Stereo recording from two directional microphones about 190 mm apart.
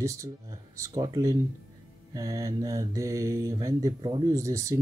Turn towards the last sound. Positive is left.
turn(degrees=-15)  # may be behind; listen again after turning